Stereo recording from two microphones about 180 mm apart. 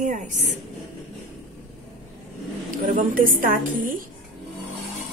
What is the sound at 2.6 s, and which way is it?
A woman's voice, 50° right (ahead or behind).